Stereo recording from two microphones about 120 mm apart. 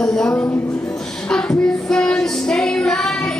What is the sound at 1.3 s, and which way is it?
Child singing, 5° left (ahead or behind).